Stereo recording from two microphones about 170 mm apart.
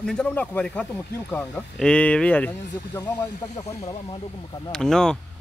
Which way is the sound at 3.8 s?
35° left (ahead or behind).